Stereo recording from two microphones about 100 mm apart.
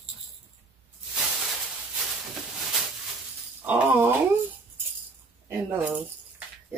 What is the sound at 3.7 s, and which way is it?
Wail, 20° right (ahead or behind).